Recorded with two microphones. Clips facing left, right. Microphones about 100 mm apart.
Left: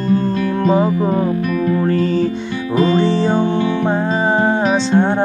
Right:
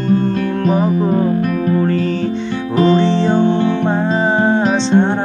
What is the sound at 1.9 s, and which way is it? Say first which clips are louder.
Music: left 1 dB; 5° left (ahead or behind).